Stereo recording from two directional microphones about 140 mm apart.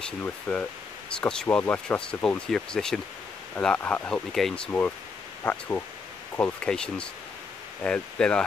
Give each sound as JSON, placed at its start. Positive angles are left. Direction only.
{"t": 0.0, "sound": "speech", "side_deg": 10}
{"t": 4.6, "sound": "speech", "side_deg": 15}